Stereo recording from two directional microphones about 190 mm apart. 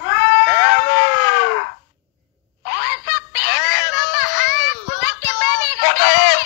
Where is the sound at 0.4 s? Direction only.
90° left.